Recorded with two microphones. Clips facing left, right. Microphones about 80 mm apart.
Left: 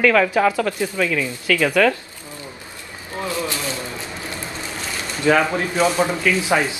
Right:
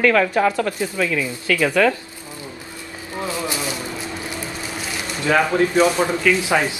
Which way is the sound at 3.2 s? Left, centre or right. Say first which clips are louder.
Even; centre.